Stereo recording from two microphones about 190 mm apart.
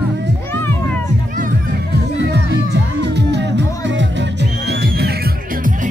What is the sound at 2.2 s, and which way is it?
Music, 65° right (ahead or behind).